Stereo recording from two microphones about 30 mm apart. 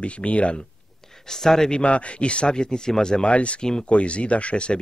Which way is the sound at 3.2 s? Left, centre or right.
Left.